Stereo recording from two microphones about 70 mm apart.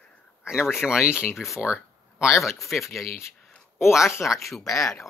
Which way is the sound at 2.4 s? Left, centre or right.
Centre.